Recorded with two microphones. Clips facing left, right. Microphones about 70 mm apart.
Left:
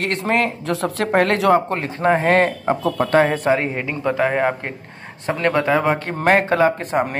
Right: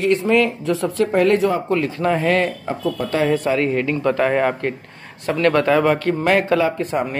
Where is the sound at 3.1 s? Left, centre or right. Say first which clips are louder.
Left 2 dB; left.